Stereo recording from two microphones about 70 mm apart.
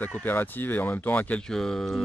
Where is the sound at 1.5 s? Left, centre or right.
Centre.